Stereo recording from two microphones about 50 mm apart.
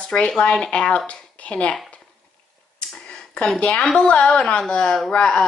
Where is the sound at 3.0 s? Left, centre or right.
Centre.